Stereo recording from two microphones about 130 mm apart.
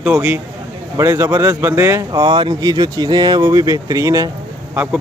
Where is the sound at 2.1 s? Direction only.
35° right (ahead or behind).